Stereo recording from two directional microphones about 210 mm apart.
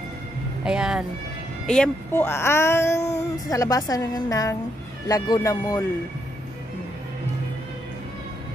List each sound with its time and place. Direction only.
0.7 s speech: 5° right (ahead or behind)
1.7 s speech: 5° left (ahead or behind)